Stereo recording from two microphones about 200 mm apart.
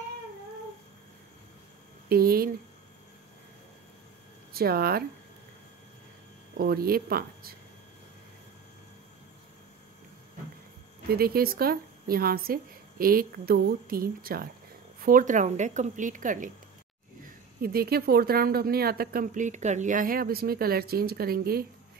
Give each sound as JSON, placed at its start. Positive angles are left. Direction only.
{"t": 2.0, "sound": "speech", "side_deg": -50}
{"t": 4.6, "sound": "speech", "side_deg": -50}
{"t": 6.5, "sound": "speech", "side_deg": -50}
{"t": 11.1, "sound": "a woman's voice", "side_deg": -50}